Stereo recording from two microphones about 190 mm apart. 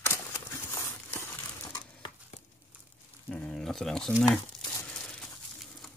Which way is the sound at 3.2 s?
5° left (ahead or behind).